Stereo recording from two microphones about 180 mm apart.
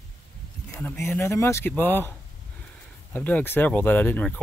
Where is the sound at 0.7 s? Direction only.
10° left (ahead or behind).